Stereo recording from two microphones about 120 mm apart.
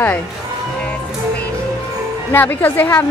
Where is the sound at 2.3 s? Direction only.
15° left (ahead or behind).